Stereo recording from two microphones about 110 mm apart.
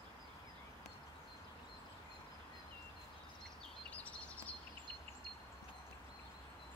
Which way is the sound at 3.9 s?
10° left (ahead or behind).